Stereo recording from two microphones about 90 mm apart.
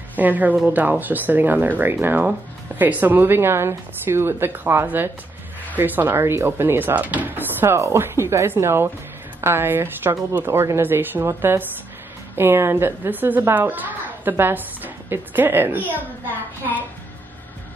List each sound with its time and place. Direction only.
0.2 s speech: 20° right (ahead or behind)